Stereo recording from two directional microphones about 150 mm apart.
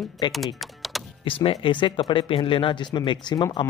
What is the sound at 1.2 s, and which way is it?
Speech, 35° left (ahead or behind).